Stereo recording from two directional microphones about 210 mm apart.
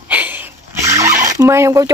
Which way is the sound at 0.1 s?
10° right (ahead or behind).